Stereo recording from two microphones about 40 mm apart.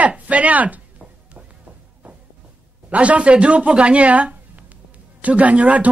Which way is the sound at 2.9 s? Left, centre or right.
Right.